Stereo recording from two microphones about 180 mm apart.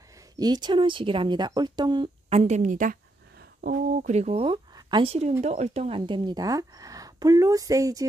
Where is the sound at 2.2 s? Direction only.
40° right (ahead or behind).